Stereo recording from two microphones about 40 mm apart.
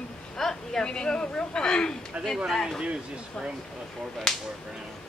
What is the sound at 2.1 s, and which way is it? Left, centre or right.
Speech, right.